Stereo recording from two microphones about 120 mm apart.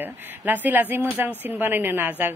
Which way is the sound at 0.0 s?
15° right (ahead or behind).